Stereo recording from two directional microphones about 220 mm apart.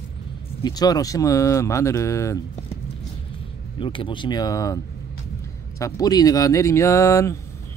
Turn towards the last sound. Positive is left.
turn(degrees=15)  # may be behind; listen again after turning